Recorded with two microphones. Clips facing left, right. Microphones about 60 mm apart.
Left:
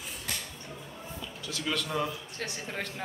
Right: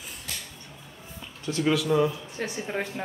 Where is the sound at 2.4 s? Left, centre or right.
Centre.